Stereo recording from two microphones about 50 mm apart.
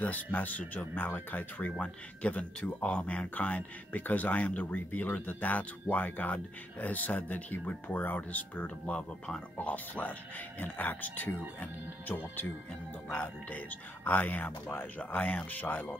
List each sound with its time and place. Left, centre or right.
0.0 s speech: left
1.8 s speech: left
9.6 s speech: left
13.1 s speech: left